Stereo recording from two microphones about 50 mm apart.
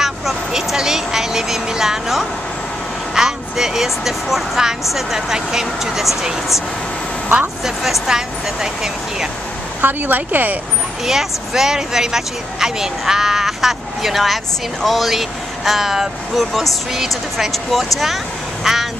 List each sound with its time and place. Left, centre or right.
0.0 s vehicle: centre
3.2 s speech: centre
7.6 s speech: centre
9.8 s speech: right
11.1 s speech: centre